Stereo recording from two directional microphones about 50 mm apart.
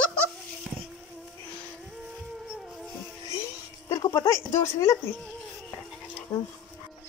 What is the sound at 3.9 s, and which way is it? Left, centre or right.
Speech, left.